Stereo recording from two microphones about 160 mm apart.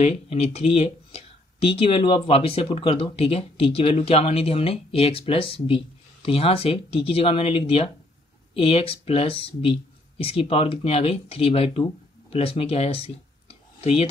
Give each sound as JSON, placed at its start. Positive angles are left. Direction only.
{"t": 0.0, "sound": "speech", "side_deg": 40}